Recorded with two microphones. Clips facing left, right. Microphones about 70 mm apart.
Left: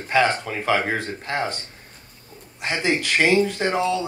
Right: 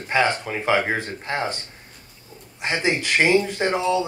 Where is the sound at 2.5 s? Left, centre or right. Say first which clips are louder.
Even; right.